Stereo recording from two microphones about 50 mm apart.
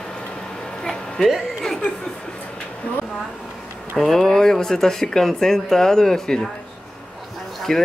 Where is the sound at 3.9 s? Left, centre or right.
Centre.